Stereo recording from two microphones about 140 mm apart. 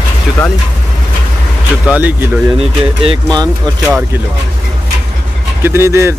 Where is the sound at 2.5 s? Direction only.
45° right (ahead or behind).